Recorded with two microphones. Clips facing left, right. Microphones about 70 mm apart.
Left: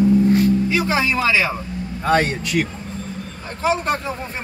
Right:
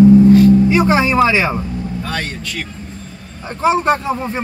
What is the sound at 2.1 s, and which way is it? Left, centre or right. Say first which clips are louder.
Speech: left 6 dB; left.